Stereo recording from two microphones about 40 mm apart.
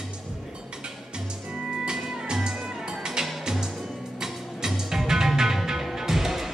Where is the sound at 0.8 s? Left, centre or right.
Right.